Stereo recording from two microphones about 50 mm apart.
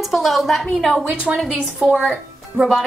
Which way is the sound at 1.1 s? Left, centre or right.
Right.